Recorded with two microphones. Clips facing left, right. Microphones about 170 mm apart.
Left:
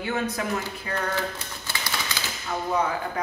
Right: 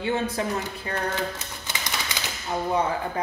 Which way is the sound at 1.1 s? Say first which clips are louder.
Even; 20° right (ahead or behind).